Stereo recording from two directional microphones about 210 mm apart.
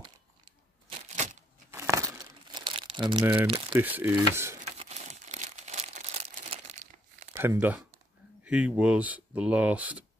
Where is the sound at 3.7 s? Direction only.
10° right (ahead or behind).